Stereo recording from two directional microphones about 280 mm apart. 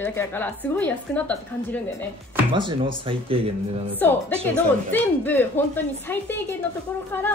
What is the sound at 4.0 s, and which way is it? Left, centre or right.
A woman's voice, centre.